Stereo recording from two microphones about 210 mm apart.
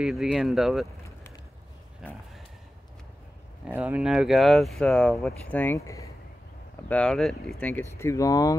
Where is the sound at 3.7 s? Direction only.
5° right (ahead or behind); by 8.5 s 15° left (ahead or behind).